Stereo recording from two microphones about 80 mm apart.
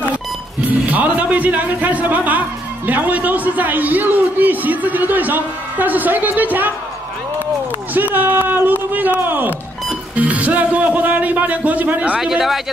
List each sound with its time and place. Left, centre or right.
0.6 s a man's voice: centre
7.9 s a man's voice: right
12.2 s speech: centre